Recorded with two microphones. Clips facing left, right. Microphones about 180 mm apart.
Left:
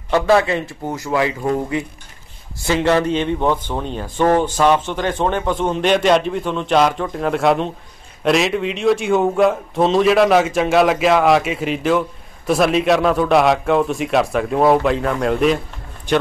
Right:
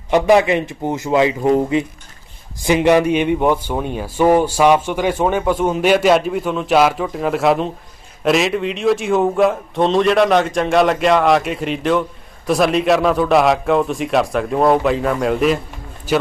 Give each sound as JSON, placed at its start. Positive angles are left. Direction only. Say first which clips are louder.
{"t": 0.1, "sound": "a man's voice", "louder": "right 2 dB", "side_deg": -15}